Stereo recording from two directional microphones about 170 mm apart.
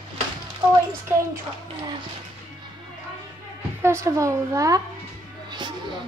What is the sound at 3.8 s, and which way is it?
Child singing, 15° right (ahead or behind).